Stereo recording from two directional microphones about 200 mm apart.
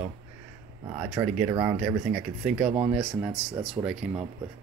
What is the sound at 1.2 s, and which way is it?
Speech, 15° right (ahead or behind).